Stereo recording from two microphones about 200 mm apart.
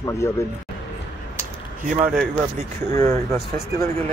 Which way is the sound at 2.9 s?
15° left (ahead or behind).